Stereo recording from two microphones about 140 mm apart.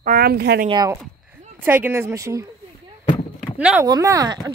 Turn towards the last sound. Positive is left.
turn(degrees=-25)  # may be behind; listen again after turning